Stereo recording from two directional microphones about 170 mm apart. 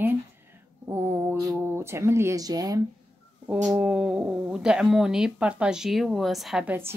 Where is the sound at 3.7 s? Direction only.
5° right (ahead or behind).